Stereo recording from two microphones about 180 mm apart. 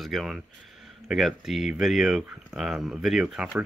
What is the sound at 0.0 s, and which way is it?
Speech, centre (ahead or behind).